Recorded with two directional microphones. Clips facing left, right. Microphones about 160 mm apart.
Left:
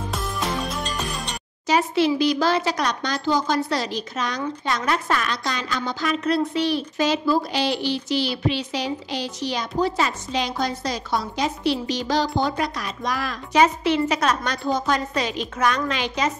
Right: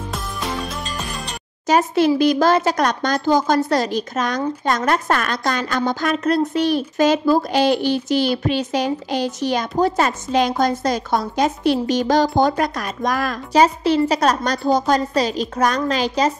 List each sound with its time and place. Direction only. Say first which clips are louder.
0.1 s music: even; centre (ahead or behind)
1.7 s speech: right 4 dB; 45° right (ahead or behind)
13.5 s a woman's voice: right 3 dB; 35° right (ahead or behind)